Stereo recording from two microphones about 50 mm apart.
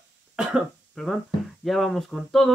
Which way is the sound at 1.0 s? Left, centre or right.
Centre.